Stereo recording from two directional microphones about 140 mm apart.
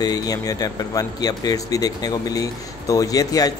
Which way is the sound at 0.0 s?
25° left (ahead or behind).